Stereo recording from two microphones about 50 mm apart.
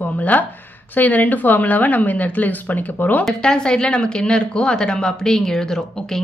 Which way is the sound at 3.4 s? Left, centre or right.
Centre.